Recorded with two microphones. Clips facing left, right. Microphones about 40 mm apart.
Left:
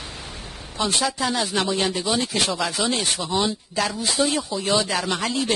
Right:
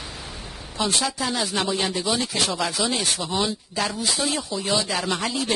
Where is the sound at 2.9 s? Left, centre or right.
Centre.